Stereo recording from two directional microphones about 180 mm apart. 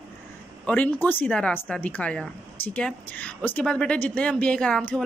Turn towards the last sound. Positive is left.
turn(degrees=5)  # may be behind; listen again after turning